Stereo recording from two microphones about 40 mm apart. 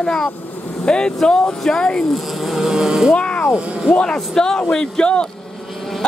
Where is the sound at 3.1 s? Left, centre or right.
Left.